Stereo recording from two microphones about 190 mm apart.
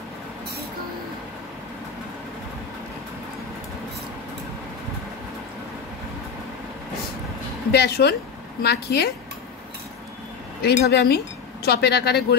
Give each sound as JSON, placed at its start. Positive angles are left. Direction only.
{"t": 7.7, "sound": "speech", "side_deg": 60}
{"t": 10.6, "sound": "speech", "side_deg": 55}